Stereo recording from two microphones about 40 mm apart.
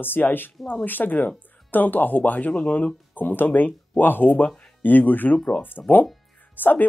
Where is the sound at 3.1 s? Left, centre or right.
Left.